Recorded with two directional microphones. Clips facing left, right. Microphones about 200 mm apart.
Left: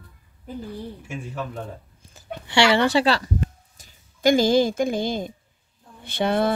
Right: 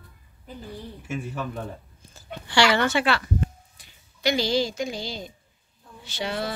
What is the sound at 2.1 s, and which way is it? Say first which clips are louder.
Speech: left 2 dB; 25° left (ahead or behind).